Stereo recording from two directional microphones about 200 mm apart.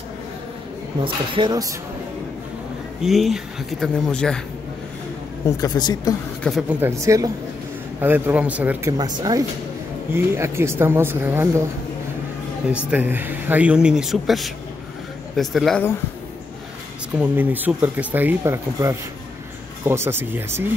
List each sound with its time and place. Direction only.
1.0 s speech: 25° right (ahead or behind)
3.0 s speech: centre (ahead or behind)
5.6 s speech: 20° left (ahead or behind)
6.4 s speech: centre (ahead or behind)
6.8 s speech: 15° right (ahead or behind)
8.9 s speech: 20° right (ahead or behind)
12.7 s speech: 10° right (ahead or behind)
17.2 s speech: 10° right (ahead or behind)